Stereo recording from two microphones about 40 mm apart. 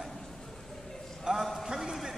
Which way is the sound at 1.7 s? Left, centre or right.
Centre.